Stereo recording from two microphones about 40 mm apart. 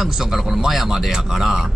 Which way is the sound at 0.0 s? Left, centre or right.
Centre.